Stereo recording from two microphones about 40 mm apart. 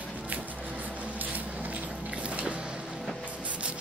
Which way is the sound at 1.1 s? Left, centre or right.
Right.